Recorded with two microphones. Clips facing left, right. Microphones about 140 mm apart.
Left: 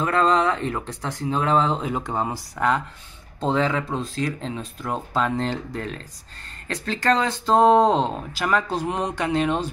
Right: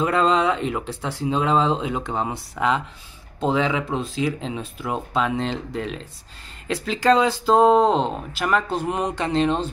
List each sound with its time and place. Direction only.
0.0 s speech: 20° right (ahead or behind)
2.0 s speech: centre (ahead or behind)
8.6 s speech: 10° left (ahead or behind)